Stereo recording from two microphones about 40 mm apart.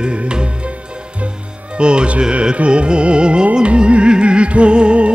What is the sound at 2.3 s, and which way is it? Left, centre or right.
Music, right.